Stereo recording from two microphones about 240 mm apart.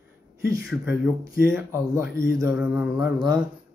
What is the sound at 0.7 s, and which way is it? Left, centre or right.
Speech, centre.